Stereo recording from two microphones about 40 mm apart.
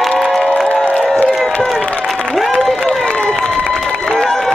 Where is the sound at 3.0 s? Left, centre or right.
Centre.